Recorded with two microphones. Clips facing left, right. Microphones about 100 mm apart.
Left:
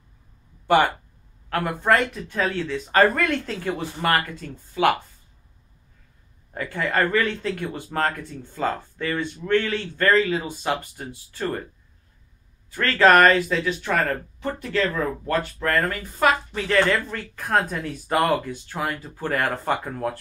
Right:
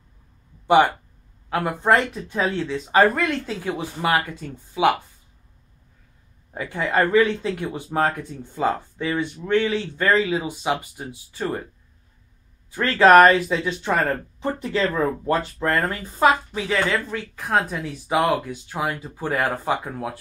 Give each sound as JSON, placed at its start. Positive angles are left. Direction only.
{"t": 1.5, "sound": "speech", "side_deg": -15}
{"t": 2.7, "sound": "speech", "side_deg": -10}
{"t": 6.5, "sound": "speech", "side_deg": -15}
{"t": 12.7, "sound": "speech", "side_deg": -15}
{"t": 15.6, "sound": "speech", "side_deg": -20}
{"t": 16.5, "sound": "speech", "side_deg": -10}